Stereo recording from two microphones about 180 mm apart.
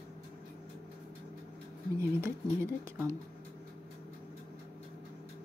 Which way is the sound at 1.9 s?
15° right (ahead or behind).